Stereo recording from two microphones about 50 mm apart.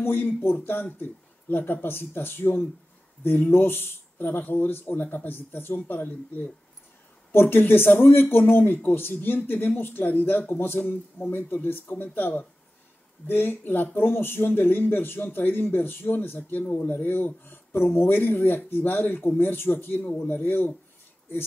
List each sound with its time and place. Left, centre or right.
0.0 s a man's voice: left